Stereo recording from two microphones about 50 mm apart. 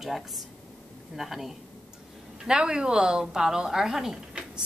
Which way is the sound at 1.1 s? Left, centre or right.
Centre.